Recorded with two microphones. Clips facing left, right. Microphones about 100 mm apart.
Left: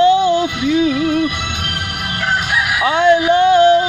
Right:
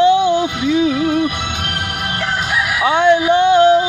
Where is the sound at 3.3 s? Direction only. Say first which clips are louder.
Even; 15° right (ahead or behind).